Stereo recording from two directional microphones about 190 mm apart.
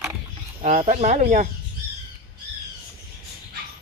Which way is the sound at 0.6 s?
40° right (ahead or behind).